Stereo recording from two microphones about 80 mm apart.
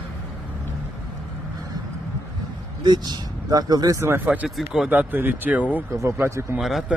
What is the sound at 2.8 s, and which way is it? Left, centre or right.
Speech, right.